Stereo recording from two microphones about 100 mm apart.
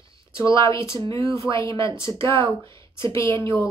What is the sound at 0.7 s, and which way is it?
Speech, 30° left (ahead or behind).